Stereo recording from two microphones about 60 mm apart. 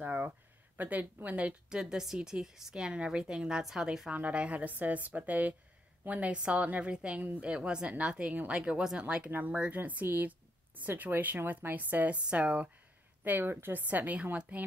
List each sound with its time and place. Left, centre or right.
0.0 s a sound: right
0.7 s a woman's voice: right
1.7 s a woman's voice: centre
4.1 s a woman's voice: right
9.8 s a woman's voice: right
13.2 s a woman's voice: right